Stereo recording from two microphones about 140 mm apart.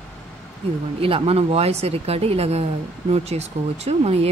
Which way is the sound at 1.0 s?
45° right (ahead or behind).